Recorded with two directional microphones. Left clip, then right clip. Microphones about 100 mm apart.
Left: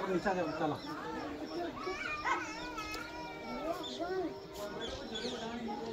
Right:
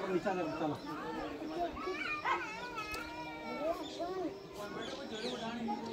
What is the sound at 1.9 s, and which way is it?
Dog, 20° left (ahead or behind).